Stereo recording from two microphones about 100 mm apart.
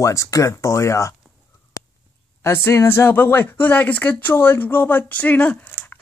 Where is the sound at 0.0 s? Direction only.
30° left (ahead or behind).